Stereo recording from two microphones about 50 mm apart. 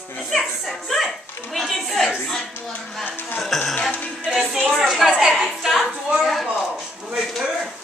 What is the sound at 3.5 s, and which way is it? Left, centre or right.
Music, centre.